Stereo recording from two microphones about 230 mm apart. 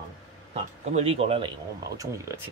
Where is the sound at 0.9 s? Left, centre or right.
Right.